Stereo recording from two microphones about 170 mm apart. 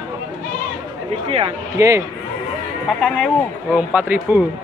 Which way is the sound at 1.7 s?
15° right (ahead or behind).